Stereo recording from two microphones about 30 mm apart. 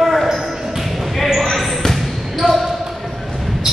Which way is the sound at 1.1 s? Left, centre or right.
Centre.